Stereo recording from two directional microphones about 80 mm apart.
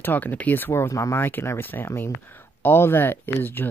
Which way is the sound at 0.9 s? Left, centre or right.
Left.